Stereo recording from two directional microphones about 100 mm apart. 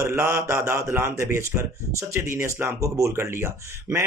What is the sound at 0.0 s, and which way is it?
Speech, 30° right (ahead or behind).